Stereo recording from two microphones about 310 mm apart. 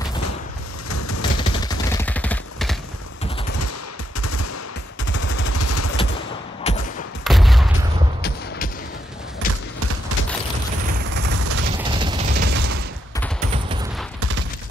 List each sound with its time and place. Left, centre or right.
0.8 s a sound: left
1.3 s a sound: centre
4.2 s machine gun: left
5.0 s gunshot: left
5.5 s vehicle: left
6.7 s gunshot: left
7.2 s fusillade: centre
9.4 s basketball bounce: left
11.3 s fusillade: right
11.8 s a sound: centre
12.4 s mechanisms: right
13.5 s fusillade: centre